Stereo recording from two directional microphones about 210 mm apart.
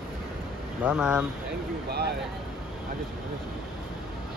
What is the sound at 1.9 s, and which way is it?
Speech, 50° right (ahead or behind).